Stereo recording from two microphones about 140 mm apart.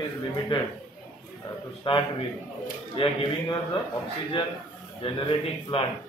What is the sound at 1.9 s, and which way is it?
Speech, 35° left (ahead or behind).